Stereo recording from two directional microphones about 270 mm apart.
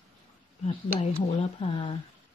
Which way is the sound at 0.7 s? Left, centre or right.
Centre.